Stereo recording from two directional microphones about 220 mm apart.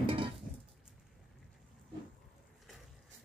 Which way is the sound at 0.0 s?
25° right (ahead or behind).